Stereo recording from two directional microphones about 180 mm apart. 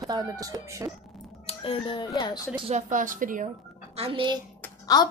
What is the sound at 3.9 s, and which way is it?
Speech, 30° right (ahead or behind).